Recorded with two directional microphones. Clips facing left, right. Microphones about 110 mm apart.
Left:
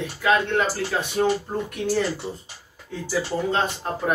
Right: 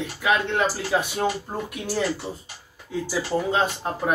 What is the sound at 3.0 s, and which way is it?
Speech, 10° right (ahead or behind).